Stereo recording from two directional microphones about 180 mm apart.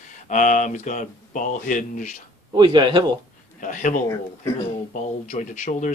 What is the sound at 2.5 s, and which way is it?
Speech, 25° right (ahead or behind).